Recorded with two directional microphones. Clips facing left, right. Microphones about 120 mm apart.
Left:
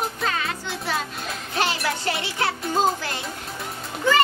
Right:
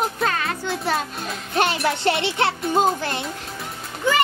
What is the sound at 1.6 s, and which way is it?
Music, 60° right (ahead or behind).